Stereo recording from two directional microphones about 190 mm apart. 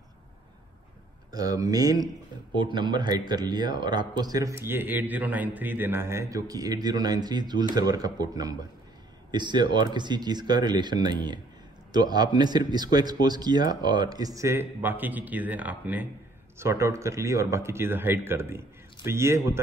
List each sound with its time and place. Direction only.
1.3 s speech: 20° right (ahead or behind)